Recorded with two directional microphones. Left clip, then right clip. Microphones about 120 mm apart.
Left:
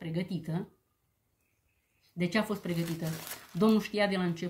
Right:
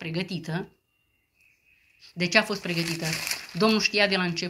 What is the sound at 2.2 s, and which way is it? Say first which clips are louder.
A woman's voice: right 9 dB; 35° left (ahead or behind).